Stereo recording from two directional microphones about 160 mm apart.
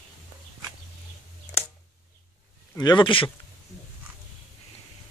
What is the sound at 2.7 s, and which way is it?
Speech, 25° left (ahead or behind).